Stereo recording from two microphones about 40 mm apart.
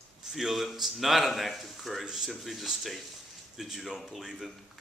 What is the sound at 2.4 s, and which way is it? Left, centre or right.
A man's voice, centre.